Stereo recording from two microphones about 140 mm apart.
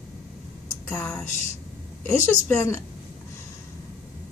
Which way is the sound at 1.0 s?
5° left (ahead or behind).